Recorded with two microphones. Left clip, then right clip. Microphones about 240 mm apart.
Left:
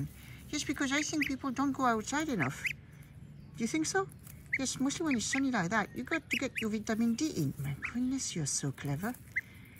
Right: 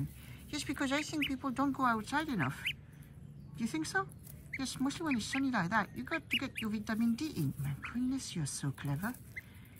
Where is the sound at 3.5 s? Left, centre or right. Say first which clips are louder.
Left 3 dB; centre.